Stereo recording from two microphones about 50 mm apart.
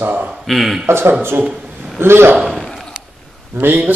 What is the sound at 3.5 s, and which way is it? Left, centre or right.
Speech, right.